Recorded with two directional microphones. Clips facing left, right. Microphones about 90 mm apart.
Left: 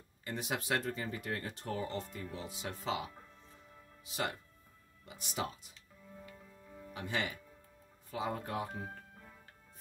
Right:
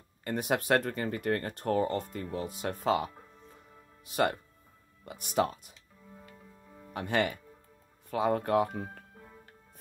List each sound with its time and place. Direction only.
0.2 s speech: 55° right (ahead or behind)
6.9 s speech: 55° right (ahead or behind)